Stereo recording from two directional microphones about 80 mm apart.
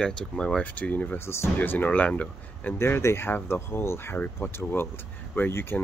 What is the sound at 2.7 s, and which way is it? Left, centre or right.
Speech, left.